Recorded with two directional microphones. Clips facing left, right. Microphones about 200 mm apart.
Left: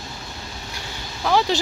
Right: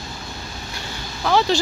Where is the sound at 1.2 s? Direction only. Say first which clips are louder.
Right 1 dB; 10° left (ahead or behind).